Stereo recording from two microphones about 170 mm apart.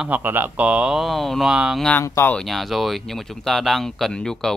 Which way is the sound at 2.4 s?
Centre (ahead or behind).